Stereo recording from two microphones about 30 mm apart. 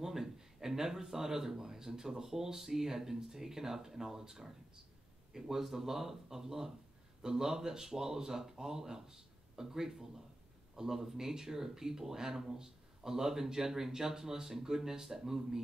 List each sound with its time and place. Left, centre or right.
0.0 s speech: centre